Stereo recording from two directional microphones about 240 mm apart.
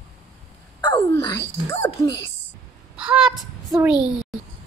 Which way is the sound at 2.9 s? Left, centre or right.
Centre.